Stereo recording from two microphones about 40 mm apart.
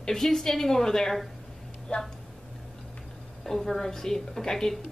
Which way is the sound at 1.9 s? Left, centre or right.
Left.